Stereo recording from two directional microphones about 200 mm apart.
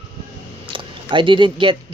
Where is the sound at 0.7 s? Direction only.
25° right (ahead or behind).